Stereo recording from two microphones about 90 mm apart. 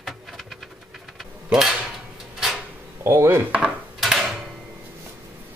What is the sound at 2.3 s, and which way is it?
Drawer open or close, 5° right (ahead or behind).